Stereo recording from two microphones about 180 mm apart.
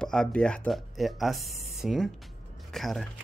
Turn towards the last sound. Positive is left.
turn(degrees=0)  # may be behind; listen again after turning